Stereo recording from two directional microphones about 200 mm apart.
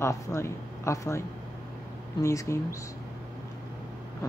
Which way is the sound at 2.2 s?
15° left (ahead or behind).